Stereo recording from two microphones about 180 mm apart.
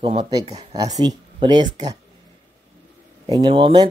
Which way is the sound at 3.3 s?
25° right (ahead or behind).